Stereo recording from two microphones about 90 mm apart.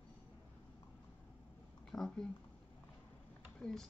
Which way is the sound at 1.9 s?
5° left (ahead or behind).